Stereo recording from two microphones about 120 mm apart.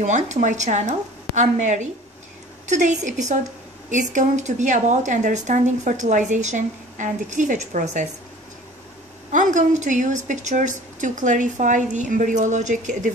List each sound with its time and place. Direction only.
0.0 s a woman's voice: 85° right
9.3 s speech: 90° right